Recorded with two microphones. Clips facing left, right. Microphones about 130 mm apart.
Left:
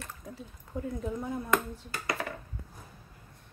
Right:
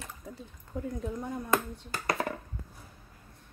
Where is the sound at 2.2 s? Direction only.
35° right (ahead or behind).